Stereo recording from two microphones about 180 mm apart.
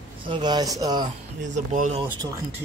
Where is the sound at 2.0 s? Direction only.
25° right (ahead or behind).